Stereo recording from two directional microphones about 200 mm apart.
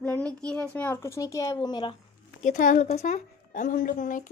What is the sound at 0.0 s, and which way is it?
A child's voice, 5° left (ahead or behind).